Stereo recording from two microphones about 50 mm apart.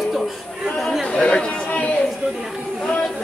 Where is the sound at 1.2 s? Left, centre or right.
Centre.